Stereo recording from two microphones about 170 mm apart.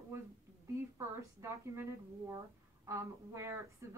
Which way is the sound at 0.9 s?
15° right (ahead or behind).